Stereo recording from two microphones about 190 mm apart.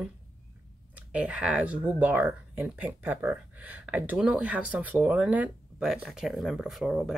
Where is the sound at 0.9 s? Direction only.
5° right (ahead or behind).